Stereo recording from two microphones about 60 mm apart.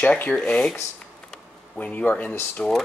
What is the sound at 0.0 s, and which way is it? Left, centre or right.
Speech, left.